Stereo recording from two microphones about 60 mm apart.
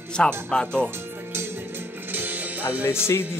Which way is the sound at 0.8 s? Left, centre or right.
Right.